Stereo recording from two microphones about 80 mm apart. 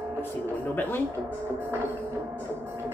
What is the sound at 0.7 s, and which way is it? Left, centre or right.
Speech, left.